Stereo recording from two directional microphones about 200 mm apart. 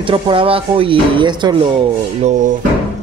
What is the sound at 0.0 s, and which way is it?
Speech, 25° right (ahead or behind).